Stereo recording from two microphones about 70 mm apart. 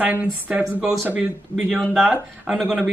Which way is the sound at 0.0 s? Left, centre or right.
Right.